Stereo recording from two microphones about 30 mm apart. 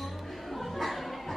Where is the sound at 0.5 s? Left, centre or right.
Centre.